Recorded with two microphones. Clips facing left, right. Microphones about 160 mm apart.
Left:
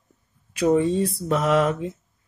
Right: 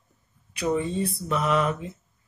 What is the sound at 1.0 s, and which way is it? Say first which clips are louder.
Mantra: left 4 dB; 75° left (ahead or behind).